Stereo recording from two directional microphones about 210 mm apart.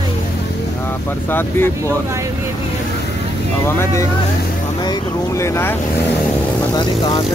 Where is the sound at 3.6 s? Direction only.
10° left (ahead or behind).